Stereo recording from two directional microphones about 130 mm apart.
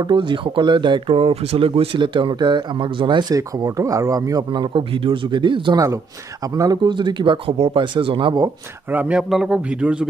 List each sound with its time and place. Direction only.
0.0 s speech: 40° right (ahead or behind)
8.9 s speech: 10° right (ahead or behind)